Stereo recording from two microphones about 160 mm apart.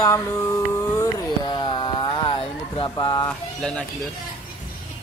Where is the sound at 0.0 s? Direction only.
20° left (ahead or behind).